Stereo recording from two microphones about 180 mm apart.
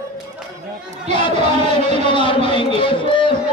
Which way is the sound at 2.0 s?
25° left (ahead or behind).